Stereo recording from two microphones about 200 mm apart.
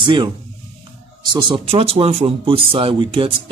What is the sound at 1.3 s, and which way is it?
Speech, 25° right (ahead or behind).